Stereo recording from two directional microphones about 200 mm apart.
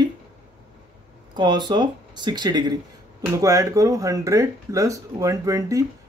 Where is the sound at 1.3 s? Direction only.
20° right (ahead or behind).